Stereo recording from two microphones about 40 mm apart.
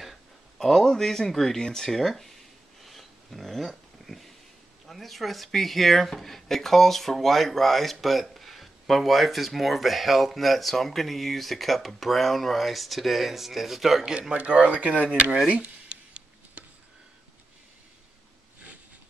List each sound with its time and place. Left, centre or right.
0.6 s speech: centre
2.8 s a sound: centre
4.8 s speech: centre
14.3 s speech: right
15.9 s tick-tock: right